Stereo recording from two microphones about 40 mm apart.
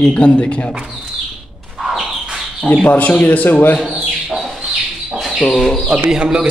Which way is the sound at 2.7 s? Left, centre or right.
Left.